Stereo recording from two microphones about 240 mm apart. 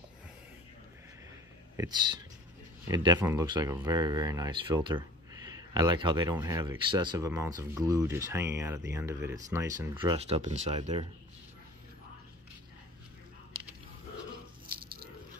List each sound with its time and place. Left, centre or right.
1.8 s speech: centre